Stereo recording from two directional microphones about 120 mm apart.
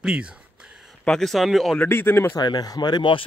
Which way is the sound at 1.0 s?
5° left (ahead or behind).